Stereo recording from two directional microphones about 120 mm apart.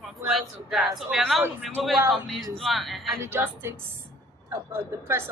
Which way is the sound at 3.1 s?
20° right (ahead or behind).